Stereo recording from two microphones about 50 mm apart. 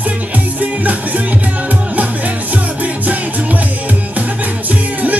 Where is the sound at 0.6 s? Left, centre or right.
Right.